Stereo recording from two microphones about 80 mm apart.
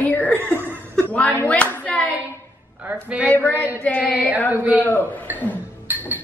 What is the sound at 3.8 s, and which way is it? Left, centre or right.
Speech, centre.